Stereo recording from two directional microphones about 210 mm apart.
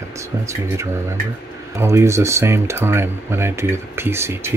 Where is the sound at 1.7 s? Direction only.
15° right (ahead or behind).